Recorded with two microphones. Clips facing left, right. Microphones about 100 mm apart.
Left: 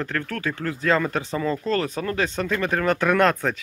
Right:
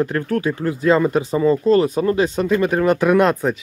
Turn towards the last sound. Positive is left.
turn(degrees=-10)  # may be behind; listen again after turning